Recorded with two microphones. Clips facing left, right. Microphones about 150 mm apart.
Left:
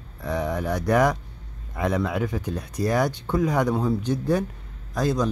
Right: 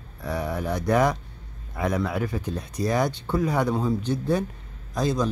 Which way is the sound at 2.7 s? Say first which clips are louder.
Left 1 dB; 10° left (ahead or behind).